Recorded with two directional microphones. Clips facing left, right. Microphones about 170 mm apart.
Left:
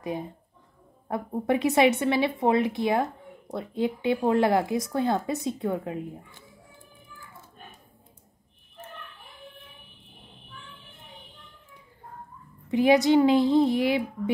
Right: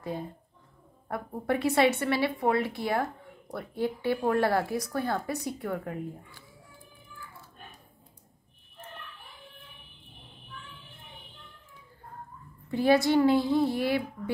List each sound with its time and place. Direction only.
0.0 s speech: 20° left (ahead or behind)
12.6 s speech: 15° left (ahead or behind)